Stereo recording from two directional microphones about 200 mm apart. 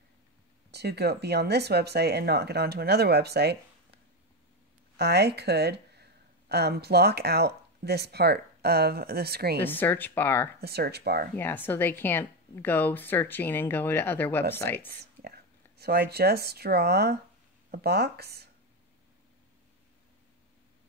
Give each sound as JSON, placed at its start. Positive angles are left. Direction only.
{"t": 0.7, "sound": "speech", "side_deg": -55}
{"t": 9.6, "sound": "a woman's voice", "side_deg": 10}
{"t": 10.6, "sound": "speech", "side_deg": -55}
{"t": 11.3, "sound": "a woman's voice", "side_deg": 10}
{"t": 15.2, "sound": "speech", "side_deg": -50}